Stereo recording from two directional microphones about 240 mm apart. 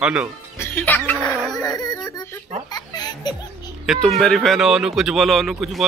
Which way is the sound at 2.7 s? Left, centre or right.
Centre.